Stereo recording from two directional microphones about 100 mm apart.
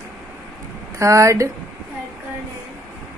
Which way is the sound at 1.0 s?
30° right (ahead or behind).